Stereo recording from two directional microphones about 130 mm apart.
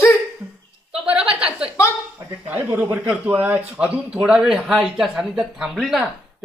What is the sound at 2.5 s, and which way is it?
A man's voice, 15° right (ahead or behind).